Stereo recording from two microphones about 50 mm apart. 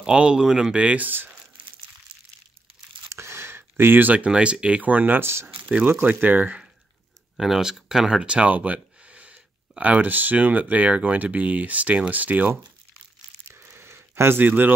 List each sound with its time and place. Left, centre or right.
0.0 s speech: centre
0.7 s speech: right
3.1 s a sound: right
4.3 s speech: centre
5.2 s speech: right
6.0 s speech: right
7.3 s speech: centre
8.2 s speech: right
13.7 s a sound: right
14.4 s speech: right